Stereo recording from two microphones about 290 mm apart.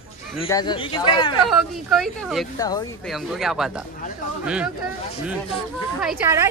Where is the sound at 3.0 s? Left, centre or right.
Centre.